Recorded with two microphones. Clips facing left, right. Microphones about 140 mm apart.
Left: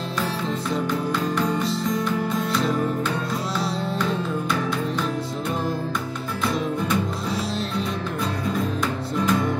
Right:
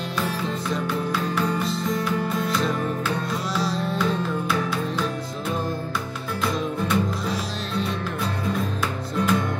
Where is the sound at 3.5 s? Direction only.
25° left (ahead or behind).